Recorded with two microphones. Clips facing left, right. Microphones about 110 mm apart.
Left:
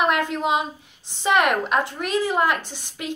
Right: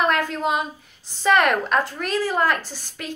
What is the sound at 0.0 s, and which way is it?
A woman's voice, 20° left (ahead or behind).